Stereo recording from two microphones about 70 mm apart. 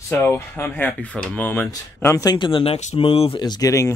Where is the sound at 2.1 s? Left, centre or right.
Left.